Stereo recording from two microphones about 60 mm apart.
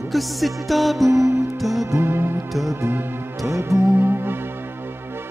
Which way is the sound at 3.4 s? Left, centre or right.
Right.